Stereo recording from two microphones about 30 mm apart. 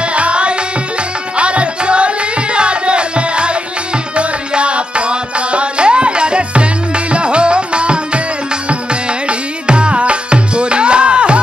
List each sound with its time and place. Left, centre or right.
0.0 s music: right
9.3 s music: right